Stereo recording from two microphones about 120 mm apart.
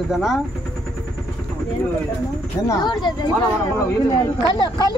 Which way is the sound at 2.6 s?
35° left (ahead or behind).